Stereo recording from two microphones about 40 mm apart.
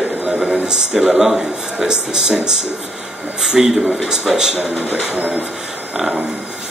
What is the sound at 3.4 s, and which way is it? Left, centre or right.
Speech, centre.